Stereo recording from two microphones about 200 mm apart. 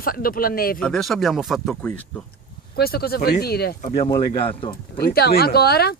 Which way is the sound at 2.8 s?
50° left (ahead or behind).